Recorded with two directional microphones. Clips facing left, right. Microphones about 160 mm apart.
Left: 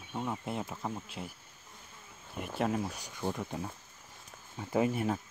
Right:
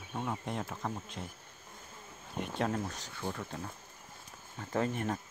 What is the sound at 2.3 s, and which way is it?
Speech, 5° left (ahead or behind).